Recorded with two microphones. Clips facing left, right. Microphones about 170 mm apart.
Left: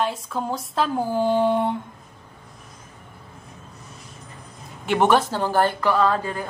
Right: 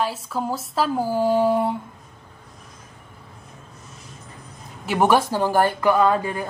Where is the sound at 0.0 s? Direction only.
5° right (ahead or behind).